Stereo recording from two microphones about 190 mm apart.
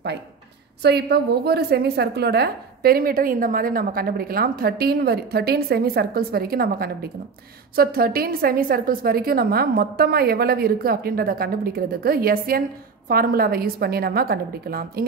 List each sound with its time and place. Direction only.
0.8 s a woman's voice: 60° right (ahead or behind)